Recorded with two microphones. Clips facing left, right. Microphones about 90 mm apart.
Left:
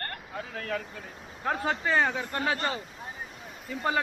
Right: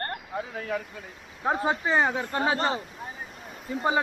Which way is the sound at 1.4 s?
20° right (ahead or behind).